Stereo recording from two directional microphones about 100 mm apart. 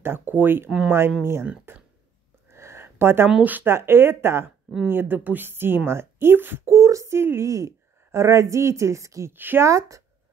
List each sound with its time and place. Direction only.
0.0 s speech: 20° right (ahead or behind)
2.5 s a sound: 25° right (ahead or behind)
3.3 s speech: 15° right (ahead or behind)
6.7 s a woman's voice: 35° right (ahead or behind)
9.4 s speech: 20° right (ahead or behind)
9.7 s speech: 30° right (ahead or behind)